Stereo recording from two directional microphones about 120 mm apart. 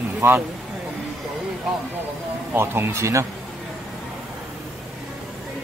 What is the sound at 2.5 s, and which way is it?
Speech, 20° right (ahead or behind).